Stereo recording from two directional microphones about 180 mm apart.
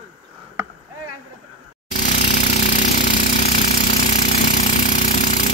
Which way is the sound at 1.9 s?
45° left (ahead or behind).